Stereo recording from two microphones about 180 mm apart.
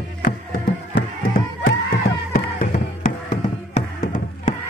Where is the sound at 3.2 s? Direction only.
40° left (ahead or behind).